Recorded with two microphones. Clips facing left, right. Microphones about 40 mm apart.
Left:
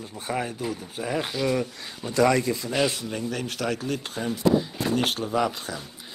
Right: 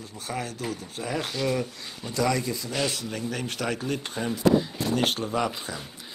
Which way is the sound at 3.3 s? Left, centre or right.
Centre.